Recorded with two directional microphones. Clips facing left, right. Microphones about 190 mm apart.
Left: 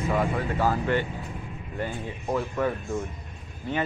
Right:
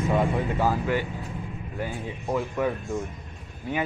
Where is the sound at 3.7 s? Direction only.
10° right (ahead or behind).